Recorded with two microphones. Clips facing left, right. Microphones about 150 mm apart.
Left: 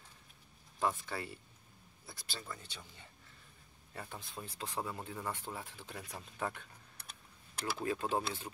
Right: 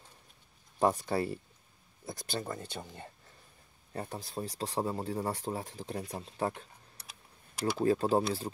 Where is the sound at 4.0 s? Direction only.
40° right (ahead or behind).